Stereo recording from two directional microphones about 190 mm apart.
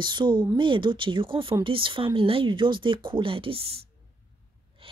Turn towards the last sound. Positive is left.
turn(degrees=-30)  # may be behind; listen again after turning